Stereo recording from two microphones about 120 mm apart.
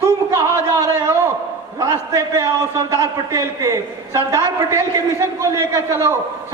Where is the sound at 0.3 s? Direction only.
25° right (ahead or behind).